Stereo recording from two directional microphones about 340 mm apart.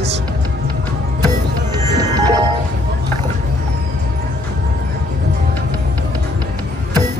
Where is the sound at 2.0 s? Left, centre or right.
Centre.